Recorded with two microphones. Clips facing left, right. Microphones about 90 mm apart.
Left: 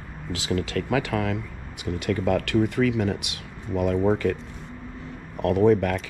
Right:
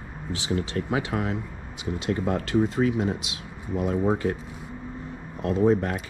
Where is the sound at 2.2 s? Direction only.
70° left (ahead or behind).